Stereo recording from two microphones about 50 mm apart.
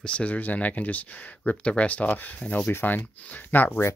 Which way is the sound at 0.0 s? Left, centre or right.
Left.